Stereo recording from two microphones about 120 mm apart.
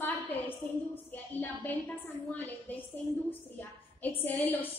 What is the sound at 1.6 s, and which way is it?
A woman's voice, 15° left (ahead or behind).